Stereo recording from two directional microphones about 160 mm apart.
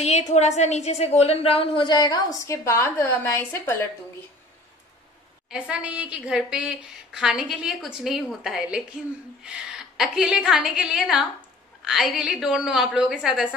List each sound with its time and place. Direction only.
0.0 s a woman's voice: 45° left (ahead or behind); by 3.8 s 15° left (ahead or behind)
5.5 s a woman's voice: 5° right (ahead or behind)